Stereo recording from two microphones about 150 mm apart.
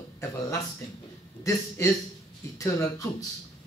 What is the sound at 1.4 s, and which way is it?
A man's voice, 20° left (ahead or behind).